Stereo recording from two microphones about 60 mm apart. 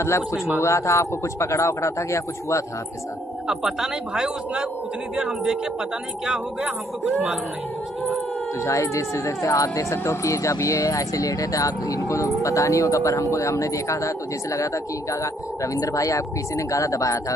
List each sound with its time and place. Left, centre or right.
0.0 s speech: left
3.4 s speech: centre
8.6 s speech: left